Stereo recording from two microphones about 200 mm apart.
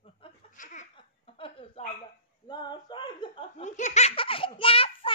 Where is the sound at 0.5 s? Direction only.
40° left (ahead or behind).